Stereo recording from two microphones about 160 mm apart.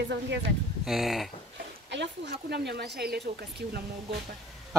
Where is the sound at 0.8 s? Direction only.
Centre (ahead or behind).